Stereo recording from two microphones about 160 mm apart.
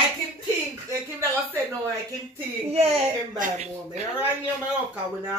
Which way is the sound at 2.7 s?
40° right (ahead or behind).